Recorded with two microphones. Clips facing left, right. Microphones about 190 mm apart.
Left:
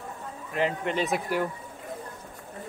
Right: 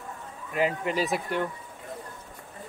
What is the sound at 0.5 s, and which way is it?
Speech, 5° right (ahead or behind).